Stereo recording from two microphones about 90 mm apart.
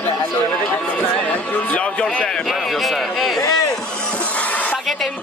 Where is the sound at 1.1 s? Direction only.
15° left (ahead or behind).